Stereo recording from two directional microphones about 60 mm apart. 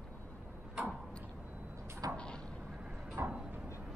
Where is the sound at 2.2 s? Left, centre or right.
Centre.